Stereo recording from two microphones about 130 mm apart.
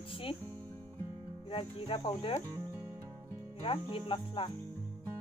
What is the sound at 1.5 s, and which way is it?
Speech, 45° left (ahead or behind).